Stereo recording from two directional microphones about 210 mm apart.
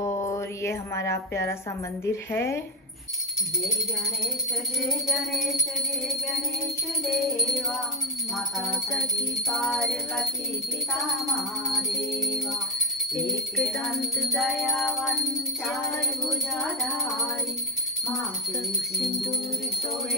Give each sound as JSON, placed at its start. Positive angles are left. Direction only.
{"t": 0.0, "sound": "mantra", "side_deg": 15}
{"t": 2.0, "sound": "speech", "side_deg": 10}
{"t": 4.8, "sound": "music", "side_deg": 0}
{"t": 7.1, "sound": "music", "side_deg": 0}
{"t": 16.3, "sound": "music", "side_deg": 0}
{"t": 18.9, "sound": "music", "side_deg": 0}